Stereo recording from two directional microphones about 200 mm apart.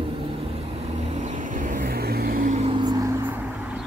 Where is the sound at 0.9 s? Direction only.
35° right (ahead or behind).